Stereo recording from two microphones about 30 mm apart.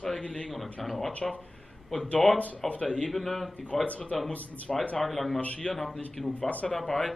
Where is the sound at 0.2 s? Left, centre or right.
Left.